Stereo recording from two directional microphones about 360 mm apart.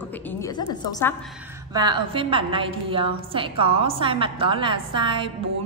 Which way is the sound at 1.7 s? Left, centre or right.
Centre.